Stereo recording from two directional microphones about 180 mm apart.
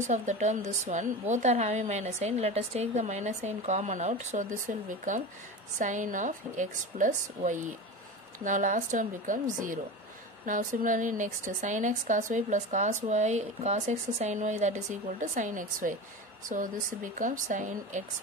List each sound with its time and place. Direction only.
0.0 s a woman's voice: 40° right (ahead or behind)